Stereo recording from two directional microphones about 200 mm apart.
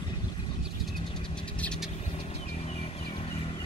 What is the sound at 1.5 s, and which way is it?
Vehicle, 5° left (ahead or behind).